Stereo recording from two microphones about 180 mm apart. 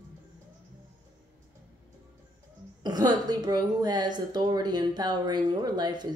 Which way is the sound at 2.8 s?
20° right (ahead or behind).